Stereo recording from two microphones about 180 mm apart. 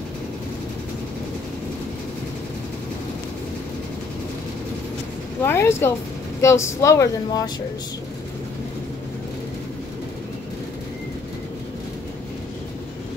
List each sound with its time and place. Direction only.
5.4 s speech: 15° left (ahead or behind)